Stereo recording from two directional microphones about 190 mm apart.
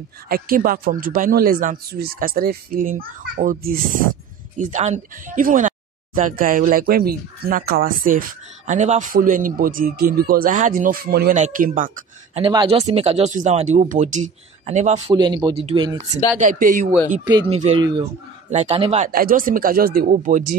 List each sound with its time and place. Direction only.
0.3 s speech: 50° right (ahead or behind)
11.3 s speech: 40° right (ahead or behind)
12.4 s speech: 30° right (ahead or behind)
15.1 s speech: 25° right (ahead or behind)
16.3 s speech: 45° right (ahead or behind)
17.3 s speech: 25° right (ahead or behind)
18.5 s speech: 35° right (ahead or behind)
19.1 s speech: 50° right (ahead or behind)